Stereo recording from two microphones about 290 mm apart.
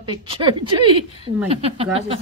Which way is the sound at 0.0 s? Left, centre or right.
Centre.